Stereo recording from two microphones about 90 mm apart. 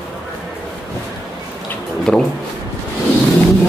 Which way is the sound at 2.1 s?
10° left (ahead or behind).